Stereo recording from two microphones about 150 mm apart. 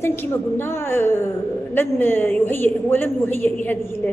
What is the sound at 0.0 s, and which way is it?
A woman's voice, 15° left (ahead or behind).